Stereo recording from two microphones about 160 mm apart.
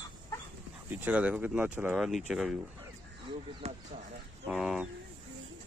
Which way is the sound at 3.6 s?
45° right (ahead or behind).